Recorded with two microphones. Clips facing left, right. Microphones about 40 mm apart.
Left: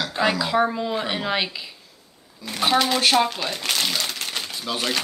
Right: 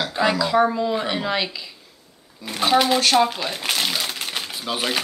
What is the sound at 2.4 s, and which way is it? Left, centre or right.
Speech, centre.